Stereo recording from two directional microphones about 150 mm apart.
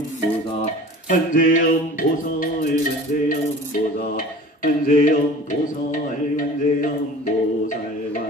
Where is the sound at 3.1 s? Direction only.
55° left (ahead or behind).